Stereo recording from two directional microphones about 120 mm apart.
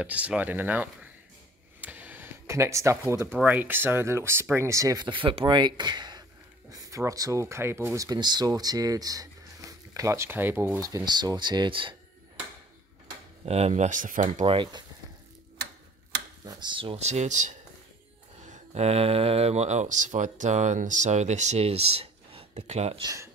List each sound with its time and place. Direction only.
0.0 s speech: 10° right (ahead or behind)
1.8 s a sound: 15° right (ahead or behind)
3.3 s speech: 15° right (ahead or behind)
5.0 s speech: 45° right (ahead or behind); by 10.8 s 15° right (ahead or behind)
10.8 s speech: 30° right (ahead or behind)
13.5 s speech: 60° right (ahead or behind); by 14.4 s 90° right
14.4 s speech: 50° right (ahead or behind)
16.4 s speech: 40° right (ahead or behind)
16.9 s speech: 65° right (ahead or behind); by 17.6 s 85° right
18.4 s speech: 75° right (ahead or behind)